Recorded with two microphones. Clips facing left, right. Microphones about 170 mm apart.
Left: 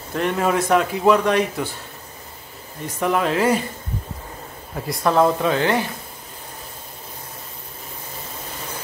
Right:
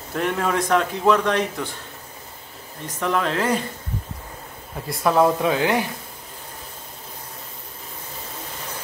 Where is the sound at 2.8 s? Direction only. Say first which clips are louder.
Left 3 dB; 10° left (ahead or behind).